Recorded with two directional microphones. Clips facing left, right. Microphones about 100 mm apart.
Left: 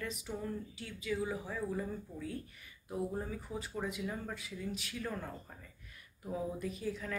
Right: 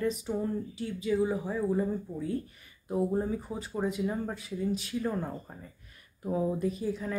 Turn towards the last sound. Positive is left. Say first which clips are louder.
# right 7 dB
turn(degrees=-25)  # may be behind; listen again after turning